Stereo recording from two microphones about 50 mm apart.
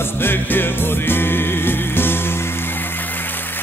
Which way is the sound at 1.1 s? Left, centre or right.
Left.